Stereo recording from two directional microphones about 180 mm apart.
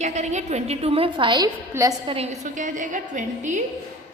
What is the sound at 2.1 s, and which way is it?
A woman's voice, 35° right (ahead or behind).